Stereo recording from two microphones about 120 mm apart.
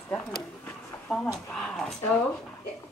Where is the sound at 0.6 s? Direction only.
5° left (ahead or behind).